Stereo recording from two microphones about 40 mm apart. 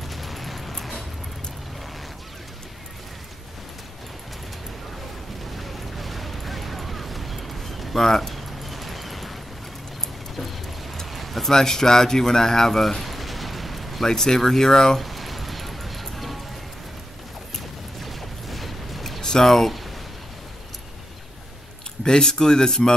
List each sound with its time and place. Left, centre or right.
0.1 s a sound: centre
5.6 s a sound: centre
11.1 s keys jangling: centre
11.5 s speech: centre
14.0 s speech: centre
15.0 s music: centre
18.0 s a sound: centre
19.2 s speech: centre
22.0 s speech: centre